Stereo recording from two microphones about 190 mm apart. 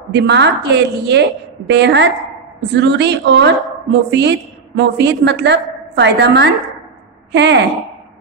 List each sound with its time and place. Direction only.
0.1 s a woman's voice: 65° right (ahead or behind)